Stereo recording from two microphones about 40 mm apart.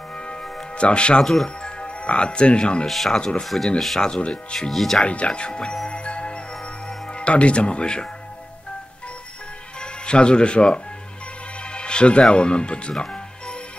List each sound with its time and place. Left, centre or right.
0.1 s music: left
0.7 s speech: left
1.2 s speech: centre
1.6 s speech: left
2.9 s speech: centre
4.2 s speech: left
4.6 s speech: centre
5.0 s speech: left
5.9 s music: left
7.1 s speech: left
9.8 s speech: left
13.0 s music: left